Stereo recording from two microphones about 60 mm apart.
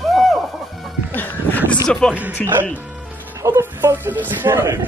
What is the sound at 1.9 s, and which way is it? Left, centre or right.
Speech, centre.